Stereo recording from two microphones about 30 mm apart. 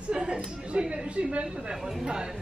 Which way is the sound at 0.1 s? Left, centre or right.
Right.